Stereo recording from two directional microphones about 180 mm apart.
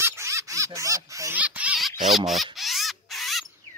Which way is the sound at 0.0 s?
15° right (ahead or behind).